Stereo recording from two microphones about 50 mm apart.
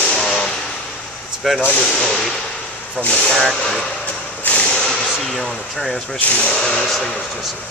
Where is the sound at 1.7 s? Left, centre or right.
Centre.